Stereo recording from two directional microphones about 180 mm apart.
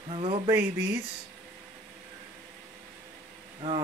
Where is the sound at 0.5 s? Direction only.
15° right (ahead or behind).